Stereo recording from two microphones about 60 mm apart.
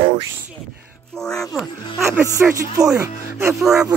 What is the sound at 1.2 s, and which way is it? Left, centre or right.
Speech, centre.